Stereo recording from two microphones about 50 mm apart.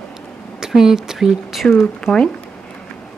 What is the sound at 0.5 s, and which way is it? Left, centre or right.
Speech, centre.